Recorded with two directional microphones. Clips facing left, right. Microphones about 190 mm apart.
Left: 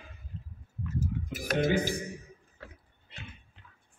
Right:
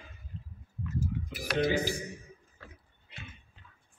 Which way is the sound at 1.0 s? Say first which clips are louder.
Left 1 dB; 50° left (ahead or behind).